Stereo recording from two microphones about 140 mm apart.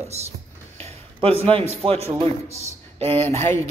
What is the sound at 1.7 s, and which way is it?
Speech, 45° right (ahead or behind).